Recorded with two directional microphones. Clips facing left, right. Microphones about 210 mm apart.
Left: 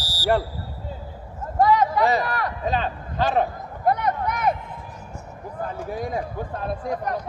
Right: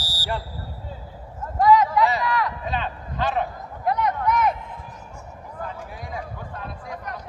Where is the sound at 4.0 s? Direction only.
60° left (ahead or behind).